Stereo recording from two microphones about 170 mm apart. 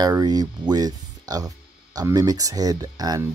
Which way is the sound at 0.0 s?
25° right (ahead or behind).